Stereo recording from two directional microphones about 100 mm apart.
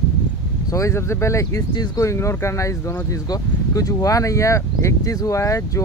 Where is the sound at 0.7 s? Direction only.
30° left (ahead or behind).